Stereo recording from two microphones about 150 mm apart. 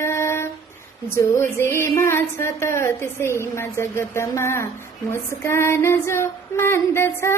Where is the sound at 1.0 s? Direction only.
20° left (ahead or behind).